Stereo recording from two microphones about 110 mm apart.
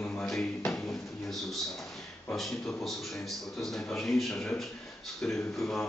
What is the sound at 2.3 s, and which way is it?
A man's voice, centre (ahead or behind).